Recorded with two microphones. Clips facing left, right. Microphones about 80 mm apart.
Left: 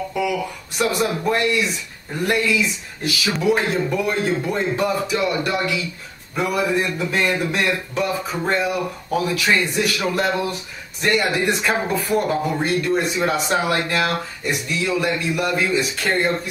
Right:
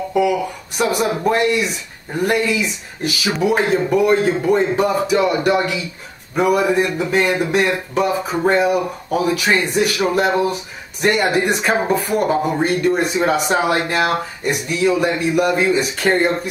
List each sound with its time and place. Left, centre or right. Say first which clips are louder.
0.1 s speech: right 7 dB; right
0.7 s speech: right 2 dB; centre
7.7 s speech: right 4 dB; right
15.7 s speech: right 3 dB; right
16.1 s speech: right 5 dB; centre